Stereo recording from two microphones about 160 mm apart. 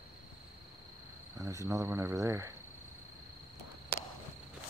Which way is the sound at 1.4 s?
20° right (ahead or behind).